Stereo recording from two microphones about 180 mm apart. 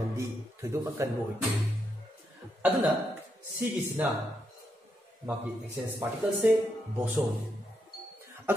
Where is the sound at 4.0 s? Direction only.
5° right (ahead or behind).